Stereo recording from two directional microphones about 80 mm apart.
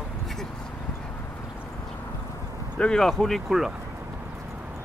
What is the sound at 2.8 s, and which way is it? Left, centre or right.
Speech, centre.